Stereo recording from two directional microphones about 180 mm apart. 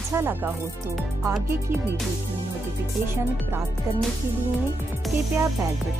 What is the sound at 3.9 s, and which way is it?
Speech, 15° right (ahead or behind).